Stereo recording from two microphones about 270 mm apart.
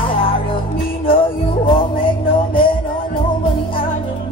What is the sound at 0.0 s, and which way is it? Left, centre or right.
Music, centre.